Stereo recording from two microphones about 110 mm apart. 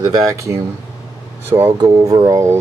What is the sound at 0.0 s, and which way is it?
Speech, 30° right (ahead or behind).